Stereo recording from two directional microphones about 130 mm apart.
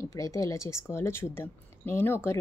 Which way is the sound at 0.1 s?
25° left (ahead or behind).